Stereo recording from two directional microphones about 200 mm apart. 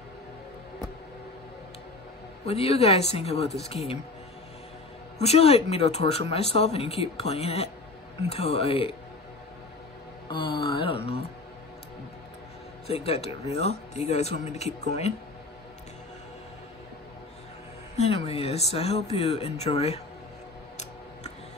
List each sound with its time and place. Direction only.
2.4 s speech: 30° left (ahead or behind)
5.2 s speech: 30° left (ahead or behind)
10.3 s speech: 25° left (ahead or behind)
12.8 s speech: 30° left (ahead or behind)
17.9 s speech: 30° left (ahead or behind)